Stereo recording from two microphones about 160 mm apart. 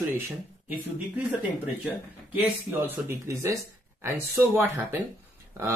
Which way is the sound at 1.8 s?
10° right (ahead or behind).